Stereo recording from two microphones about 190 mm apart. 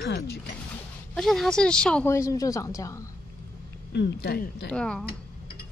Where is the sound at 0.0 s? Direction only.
65° left (ahead or behind).